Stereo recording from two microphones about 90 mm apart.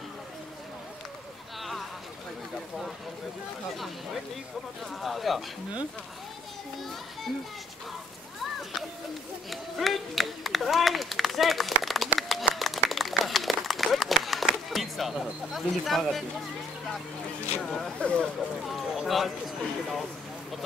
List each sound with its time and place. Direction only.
1.6 s a sound: centre (ahead or behind)
3.7 s speech: centre (ahead or behind)
9.5 s run: centre (ahead or behind)
11.8 s a sound: centre (ahead or behind)
12.2 s clapping: centre (ahead or behind)
12.5 s run: centre (ahead or behind)
17.6 s speech: 5° left (ahead or behind)
18.6 s speech: centre (ahead or behind)